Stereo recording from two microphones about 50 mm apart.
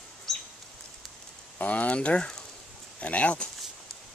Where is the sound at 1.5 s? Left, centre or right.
Left.